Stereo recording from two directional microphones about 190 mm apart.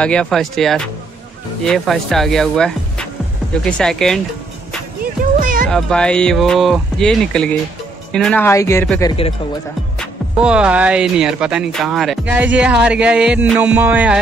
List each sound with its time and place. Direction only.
0.0 s speech: 5° left (ahead or behind)
5.0 s music: 45° right (ahead or behind)
5.7 s speech: 5° left (ahead or behind)
9.0 s speech: 30° left (ahead or behind)
9.9 s speech: 5° right (ahead or behind)